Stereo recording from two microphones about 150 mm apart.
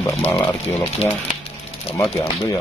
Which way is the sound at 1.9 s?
20° left (ahead or behind).